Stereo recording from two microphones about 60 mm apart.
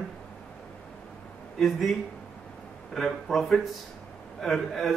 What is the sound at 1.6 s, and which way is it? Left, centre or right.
Speech, centre.